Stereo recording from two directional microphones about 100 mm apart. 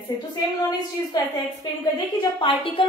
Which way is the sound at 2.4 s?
60° left (ahead or behind).